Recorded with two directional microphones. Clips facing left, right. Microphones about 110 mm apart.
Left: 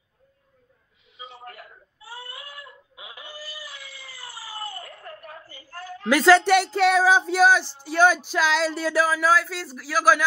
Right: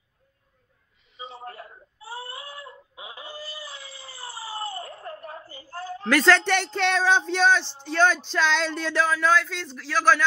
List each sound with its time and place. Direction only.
1.2 s baby cry: 30° right (ahead or behind)
6.0 s speech: 10° left (ahead or behind)